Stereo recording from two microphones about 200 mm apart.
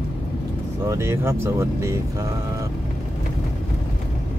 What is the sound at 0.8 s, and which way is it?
Speech, 15° right (ahead or behind).